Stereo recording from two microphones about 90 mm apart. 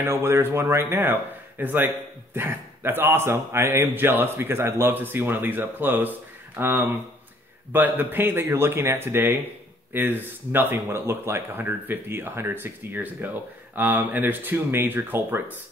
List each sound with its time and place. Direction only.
0.0 s a man's voice: 25° right (ahead or behind)